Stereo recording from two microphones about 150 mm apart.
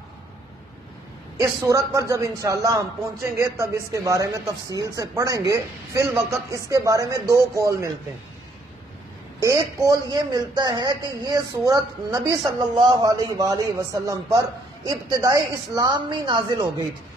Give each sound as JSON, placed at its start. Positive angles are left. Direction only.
{"t": 1.4, "sound": "a man's voice", "side_deg": -20}
{"t": 9.4, "sound": "a man's voice", "side_deg": -20}